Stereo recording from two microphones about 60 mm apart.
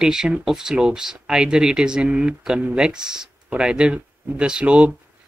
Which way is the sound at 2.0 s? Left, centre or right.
Right.